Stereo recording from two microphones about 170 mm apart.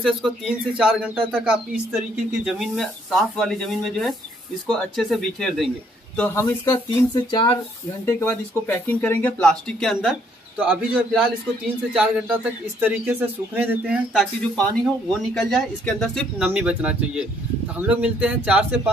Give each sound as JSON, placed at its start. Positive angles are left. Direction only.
{"t": 0.0, "sound": "a man's voice", "side_deg": 0}
{"t": 7.2, "sound": "speech", "side_deg": 25}
{"t": 8.0, "sound": "a man's voice", "side_deg": 15}
{"t": 14.1, "sound": "a man's voice", "side_deg": 5}